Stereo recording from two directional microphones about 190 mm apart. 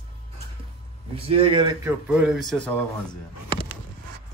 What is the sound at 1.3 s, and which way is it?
Speech, 30° right (ahead or behind).